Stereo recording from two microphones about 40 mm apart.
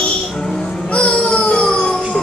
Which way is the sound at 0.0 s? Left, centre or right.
Left.